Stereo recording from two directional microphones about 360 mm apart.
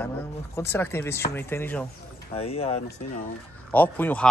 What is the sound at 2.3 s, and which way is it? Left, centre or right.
Speech, centre.